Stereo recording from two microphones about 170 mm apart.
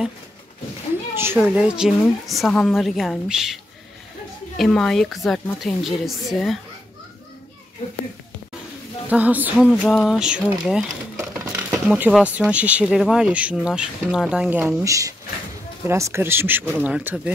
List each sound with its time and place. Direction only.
1.1 s a sound: 15° right (ahead or behind)
1.4 s a woman's voice: 5° right (ahead or behind)
4.6 s a woman's voice: 5° left (ahead or behind)
9.1 s speech: 10° right (ahead or behind)
9.7 s a woman's voice: 5° left (ahead or behind)
11.1 s a sound: 15° right (ahead or behind)
11.9 s speech: 5° right (ahead or behind)